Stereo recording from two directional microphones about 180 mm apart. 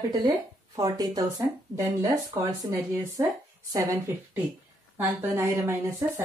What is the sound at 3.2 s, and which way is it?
Speech, 20° right (ahead or behind).